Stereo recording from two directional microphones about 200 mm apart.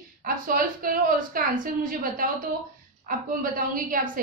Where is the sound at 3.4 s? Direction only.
45° right (ahead or behind).